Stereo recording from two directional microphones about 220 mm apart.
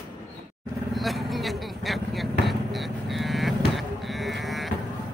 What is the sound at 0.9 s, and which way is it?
Vehicle, centre (ahead or behind).